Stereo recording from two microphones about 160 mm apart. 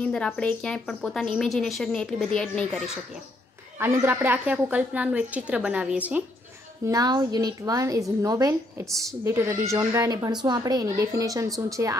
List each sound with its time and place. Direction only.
0.0 s a woman's voice: 5° left (ahead or behind)
3.8 s a woman's voice: 15° right (ahead or behind)
6.9 s speech: 25° right (ahead or behind)